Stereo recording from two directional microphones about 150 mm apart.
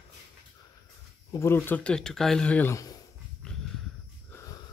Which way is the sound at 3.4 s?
5° left (ahead or behind).